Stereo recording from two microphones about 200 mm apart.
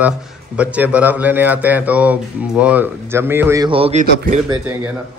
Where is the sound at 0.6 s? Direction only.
5° right (ahead or behind); by 4.0 s 25° right (ahead or behind).